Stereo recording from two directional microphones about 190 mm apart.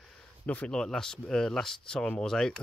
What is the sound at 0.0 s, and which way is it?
Speech, 5° left (ahead or behind).